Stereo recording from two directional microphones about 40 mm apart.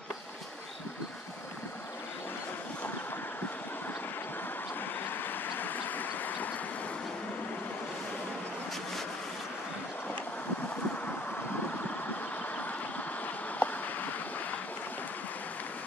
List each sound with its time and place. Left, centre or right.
5.5 s train: left
13.6 s boat: left